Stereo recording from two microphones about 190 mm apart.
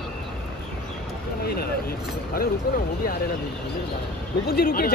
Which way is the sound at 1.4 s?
55° left (ahead or behind).